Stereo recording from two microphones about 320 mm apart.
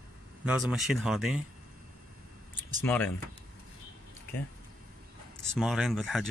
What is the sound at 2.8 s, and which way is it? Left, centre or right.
Speech, centre.